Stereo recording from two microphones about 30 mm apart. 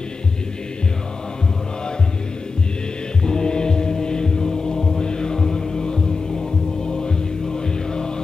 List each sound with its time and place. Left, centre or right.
3.3 s mantra: left
6.9 s music: left